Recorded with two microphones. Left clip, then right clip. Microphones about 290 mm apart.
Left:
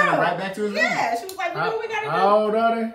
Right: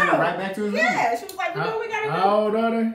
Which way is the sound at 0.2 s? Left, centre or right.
Centre.